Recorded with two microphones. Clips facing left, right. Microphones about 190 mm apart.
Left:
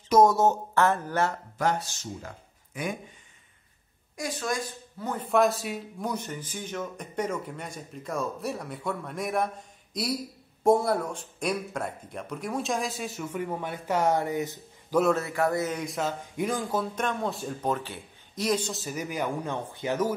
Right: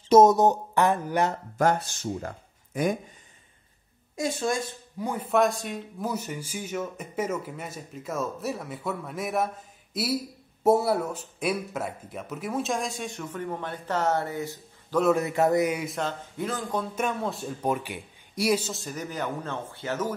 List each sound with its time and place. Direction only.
0.1 s speech: 20° right (ahead or behind)
1.6 s speech: 50° right (ahead or behind)
4.2 s a woman's voice: 25° right (ahead or behind)
4.9 s a man's voice: 10° right (ahead or behind); by 15.0 s 20° left (ahead or behind)
15.1 s speech: 20° right (ahead or behind)
15.8 s a man's voice: centre (ahead or behind)
16.9 s a man's voice: 10° right (ahead or behind); by 20.2 s 15° left (ahead or behind)